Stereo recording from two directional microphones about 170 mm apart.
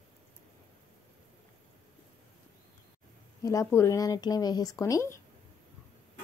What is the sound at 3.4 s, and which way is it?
Speech, 20° left (ahead or behind).